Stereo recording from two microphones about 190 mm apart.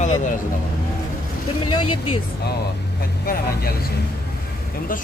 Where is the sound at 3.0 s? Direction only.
55° left (ahead or behind).